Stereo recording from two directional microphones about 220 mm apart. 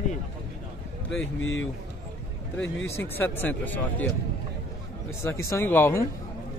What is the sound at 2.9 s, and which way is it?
Speech, 10° left (ahead or behind).